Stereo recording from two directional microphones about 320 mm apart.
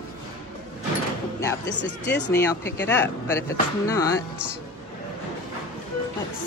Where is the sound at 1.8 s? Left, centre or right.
Left.